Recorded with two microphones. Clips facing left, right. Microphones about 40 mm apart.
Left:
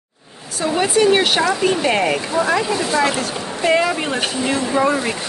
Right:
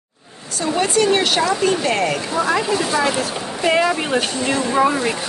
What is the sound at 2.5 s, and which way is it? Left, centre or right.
Speech, centre.